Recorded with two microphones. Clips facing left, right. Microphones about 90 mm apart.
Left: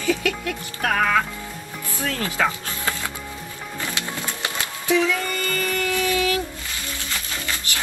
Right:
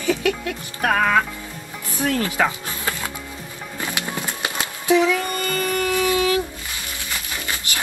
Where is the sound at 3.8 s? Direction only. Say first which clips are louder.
Right 3 dB; 20° right (ahead or behind).